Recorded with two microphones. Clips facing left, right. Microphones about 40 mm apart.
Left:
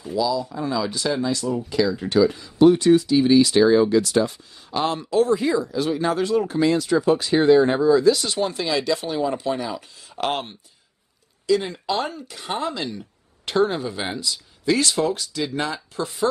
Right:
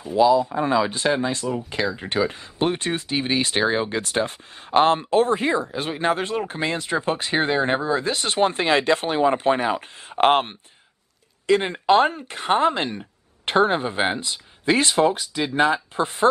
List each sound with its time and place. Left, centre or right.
0.1 s speech: right